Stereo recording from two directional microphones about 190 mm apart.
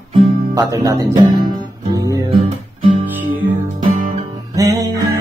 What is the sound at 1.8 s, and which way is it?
Guitar, 20° right (ahead or behind).